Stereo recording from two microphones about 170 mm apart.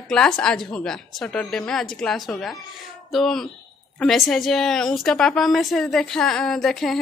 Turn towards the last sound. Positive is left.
turn(degrees=0)  # may be behind; listen again after turning